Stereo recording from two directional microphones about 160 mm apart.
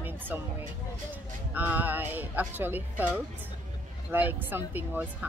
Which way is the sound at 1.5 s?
10° right (ahead or behind).